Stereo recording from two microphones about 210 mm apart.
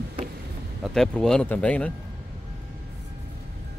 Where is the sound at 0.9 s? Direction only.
Centre (ahead or behind).